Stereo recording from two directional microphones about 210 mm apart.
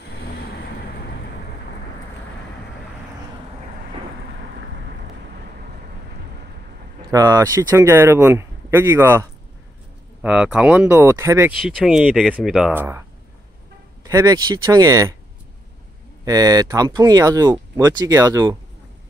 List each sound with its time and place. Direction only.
7.1 s speech: 15° right (ahead or behind)
11.6 s speech: centre (ahead or behind)
14.0 s speech: 15° right (ahead or behind)
16.3 s speech: 15° right (ahead or behind)